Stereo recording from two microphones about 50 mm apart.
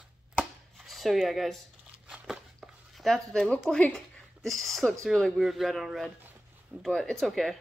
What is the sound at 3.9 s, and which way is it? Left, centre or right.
A woman's voice, centre.